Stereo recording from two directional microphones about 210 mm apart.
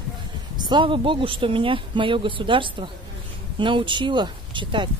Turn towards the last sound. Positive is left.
turn(degrees=-20)  # may be behind; listen again after turning